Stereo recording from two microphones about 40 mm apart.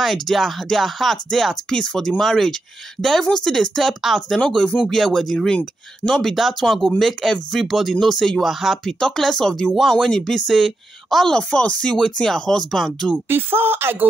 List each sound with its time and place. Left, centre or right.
0.0 s speech: centre
1.1 s speech: centre
8.5 s speech: centre
9.0 s speech: centre
11.3 s speech: left
12.7 s speech: centre
13.3 s speech: right